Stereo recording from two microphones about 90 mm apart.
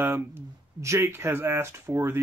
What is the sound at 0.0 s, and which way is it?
Speech, 25° right (ahead or behind).